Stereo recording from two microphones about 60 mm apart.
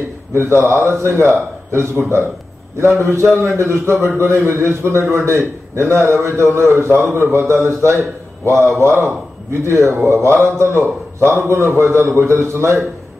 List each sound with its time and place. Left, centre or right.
0.3 s a man's voice: right
3.3 s a man's voice: right